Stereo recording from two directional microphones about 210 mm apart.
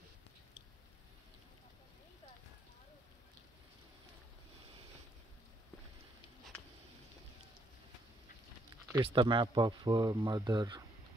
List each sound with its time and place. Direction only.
8.9 s speech: 20° right (ahead or behind)